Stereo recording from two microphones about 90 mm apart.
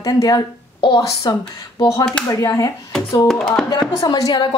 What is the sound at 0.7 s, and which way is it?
Speech, 65° left (ahead or behind).